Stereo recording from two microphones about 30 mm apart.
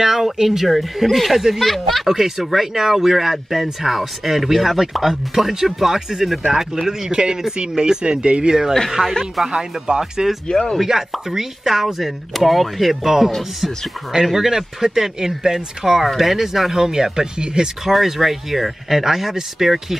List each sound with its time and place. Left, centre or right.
0.0 s speech: centre
1.3 s speech: centre
1.6 s speech: centre
2.0 s speech: centre
5.3 s speech: centre
10.5 s speech: left
10.9 s speech: centre
14.2 s speech: centre
17.8 s speech: centre